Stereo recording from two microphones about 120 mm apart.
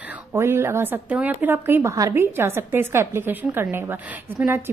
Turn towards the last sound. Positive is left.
turn(degrees=-20)  # may be behind; listen again after turning